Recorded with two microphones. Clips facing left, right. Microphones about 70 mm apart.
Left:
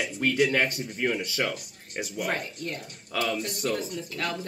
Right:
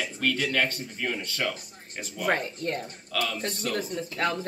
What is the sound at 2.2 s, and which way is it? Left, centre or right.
Speech, right.